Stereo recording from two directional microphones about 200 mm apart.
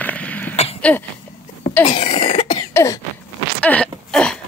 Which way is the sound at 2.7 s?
15° left (ahead or behind).